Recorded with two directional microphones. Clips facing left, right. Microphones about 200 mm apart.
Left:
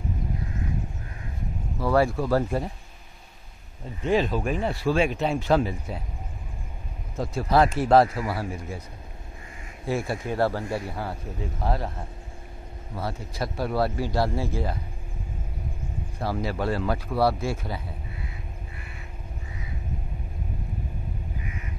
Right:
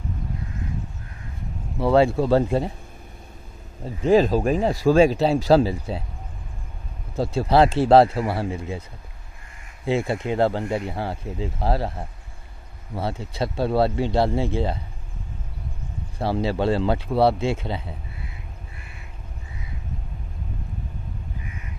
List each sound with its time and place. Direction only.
1.8 s speech: 25° right (ahead or behind)
3.8 s speech: 40° right (ahead or behind)
7.2 s speech: 30° right (ahead or behind)
9.8 s speech: 25° right (ahead or behind)
12.9 s speech: 25° right (ahead or behind)
16.2 s speech: 30° right (ahead or behind)